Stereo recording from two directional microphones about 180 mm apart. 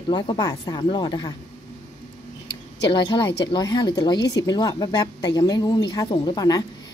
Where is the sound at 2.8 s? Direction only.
25° left (ahead or behind).